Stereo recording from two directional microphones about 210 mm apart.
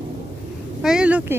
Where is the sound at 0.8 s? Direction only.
5° right (ahead or behind).